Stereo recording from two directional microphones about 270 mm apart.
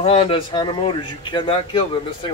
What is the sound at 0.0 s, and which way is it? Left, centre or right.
Speech, left.